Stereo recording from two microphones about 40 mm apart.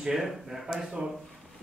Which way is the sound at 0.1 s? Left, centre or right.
Centre.